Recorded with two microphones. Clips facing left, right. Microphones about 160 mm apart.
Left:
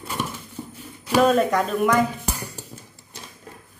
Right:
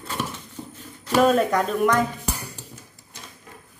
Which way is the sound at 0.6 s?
10° left (ahead or behind).